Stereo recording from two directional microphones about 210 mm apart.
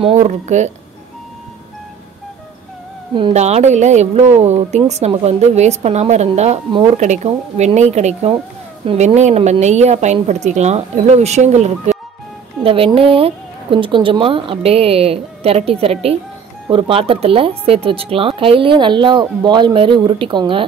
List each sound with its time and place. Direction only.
0.0 s a woman's voice: 30° right (ahead or behind)
3.2 s a woman's voice: 30° right (ahead or behind)